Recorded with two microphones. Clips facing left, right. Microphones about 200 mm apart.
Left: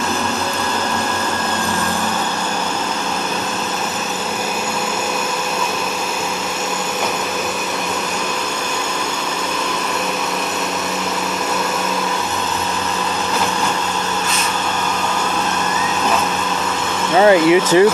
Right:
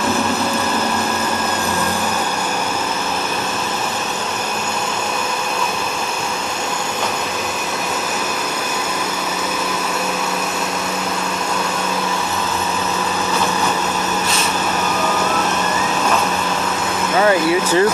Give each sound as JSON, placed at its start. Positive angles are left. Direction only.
{"t": 17.2, "sound": "speech", "side_deg": 20}